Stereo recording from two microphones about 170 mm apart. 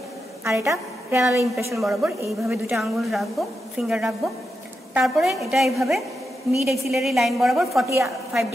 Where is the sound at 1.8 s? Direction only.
Centre (ahead or behind).